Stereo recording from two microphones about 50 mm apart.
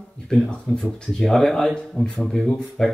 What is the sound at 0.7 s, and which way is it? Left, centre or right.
Speech, centre.